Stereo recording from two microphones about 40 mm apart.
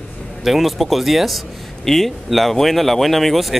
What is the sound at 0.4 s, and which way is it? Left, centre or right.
Speech, centre.